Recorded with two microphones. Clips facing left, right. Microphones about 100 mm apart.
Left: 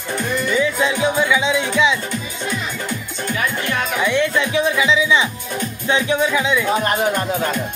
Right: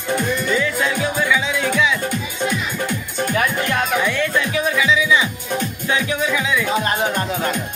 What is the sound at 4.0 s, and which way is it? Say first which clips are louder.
Music: left 2 dB; 20° left (ahead or behind).